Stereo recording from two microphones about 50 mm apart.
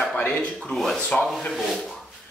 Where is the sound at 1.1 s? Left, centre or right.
Left.